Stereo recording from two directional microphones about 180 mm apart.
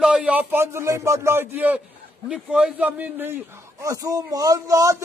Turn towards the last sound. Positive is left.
turn(degrees=-20)  # may be behind; listen again after turning